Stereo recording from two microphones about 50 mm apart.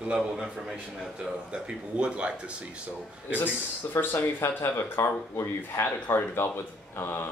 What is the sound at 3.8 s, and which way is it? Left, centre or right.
Speech, left.